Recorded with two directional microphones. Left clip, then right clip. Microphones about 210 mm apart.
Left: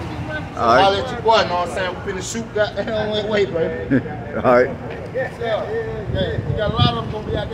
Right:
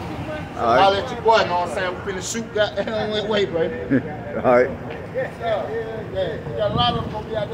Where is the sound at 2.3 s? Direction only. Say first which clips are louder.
Left 1 dB; 50° right (ahead or behind).